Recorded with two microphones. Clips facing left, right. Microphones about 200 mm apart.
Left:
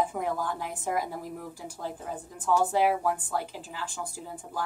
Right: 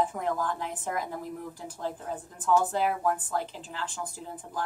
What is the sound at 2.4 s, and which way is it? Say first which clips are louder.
A woman's voice: left 1 dB; 10° left (ahead or behind).